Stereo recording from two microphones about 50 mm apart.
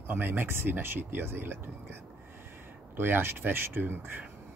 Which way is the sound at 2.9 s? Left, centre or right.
Right.